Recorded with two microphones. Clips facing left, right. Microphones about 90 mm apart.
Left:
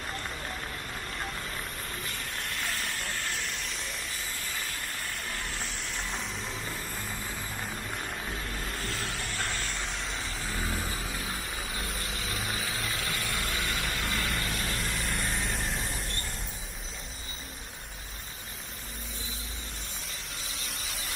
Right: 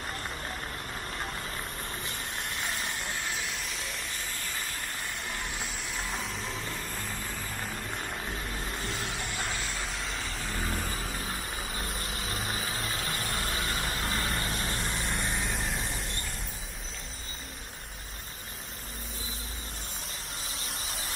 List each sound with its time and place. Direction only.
2.1 s vehicle: 30° right (ahead or behind)
2.8 s vehicle: centre (ahead or behind)
5.6 s vehicle: 5° right (ahead or behind)
8.6 s vehicle: 20° right (ahead or behind)
9.3 s vehicle: 5° right (ahead or behind)
11.6 s vehicle: 40° right (ahead or behind)
15.0 s vehicle: 5° right (ahead or behind)